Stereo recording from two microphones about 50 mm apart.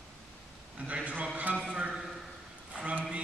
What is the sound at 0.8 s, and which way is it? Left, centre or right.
Mantra, right.